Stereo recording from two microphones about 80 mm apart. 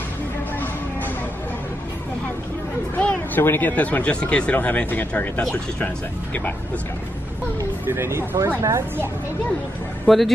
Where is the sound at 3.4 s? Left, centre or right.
Left.